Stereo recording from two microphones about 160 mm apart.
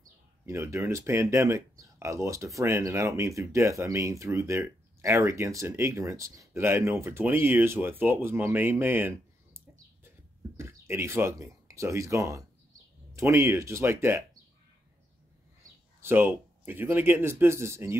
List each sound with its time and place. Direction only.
0.5 s speech: 15° right (ahead or behind)
10.6 s speech: 15° right (ahead or behind)
16.0 s speech: 15° right (ahead or behind)